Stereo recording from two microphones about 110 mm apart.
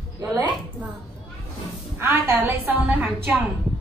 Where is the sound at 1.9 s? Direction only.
20° right (ahead or behind).